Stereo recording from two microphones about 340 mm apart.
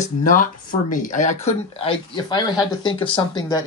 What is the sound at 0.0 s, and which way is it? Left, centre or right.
Speech, left.